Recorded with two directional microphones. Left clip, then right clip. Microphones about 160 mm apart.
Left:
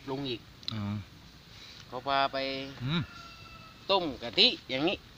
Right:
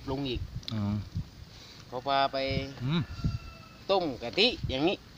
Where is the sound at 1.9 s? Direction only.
20° right (ahead or behind).